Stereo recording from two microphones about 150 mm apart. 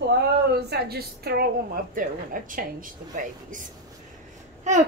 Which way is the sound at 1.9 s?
65° right (ahead or behind).